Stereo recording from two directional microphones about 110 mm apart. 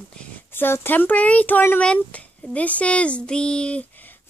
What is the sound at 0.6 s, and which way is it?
Speech, 20° left (ahead or behind).